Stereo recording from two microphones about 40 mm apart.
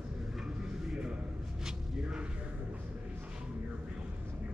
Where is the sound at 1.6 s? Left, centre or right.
Centre.